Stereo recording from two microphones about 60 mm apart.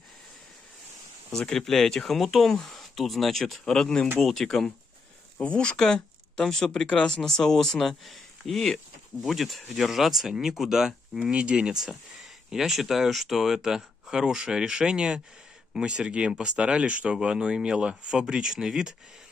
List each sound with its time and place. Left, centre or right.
1.3 s speech: centre
5.4 s speech: centre
11.8 s speech: centre